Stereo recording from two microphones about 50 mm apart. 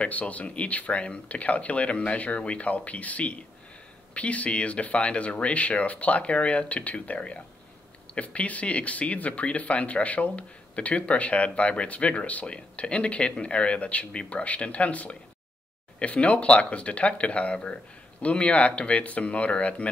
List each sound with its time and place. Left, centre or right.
0.0 s speech: left